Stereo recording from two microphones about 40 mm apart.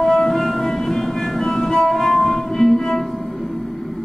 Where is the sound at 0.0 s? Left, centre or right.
Centre.